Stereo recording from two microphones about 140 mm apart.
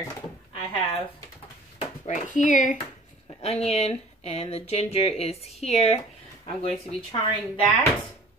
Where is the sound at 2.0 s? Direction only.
65° left (ahead or behind).